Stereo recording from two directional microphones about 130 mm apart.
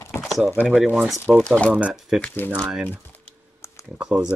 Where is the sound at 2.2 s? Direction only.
15° left (ahead or behind).